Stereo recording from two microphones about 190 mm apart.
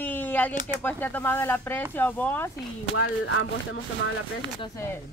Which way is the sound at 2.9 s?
85° left.